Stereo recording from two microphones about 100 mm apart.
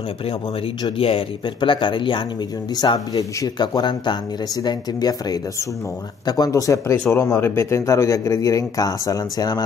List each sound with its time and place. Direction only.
0.9 s speech: 65° left (ahead or behind)
2.7 s speech: 40° left (ahead or behind)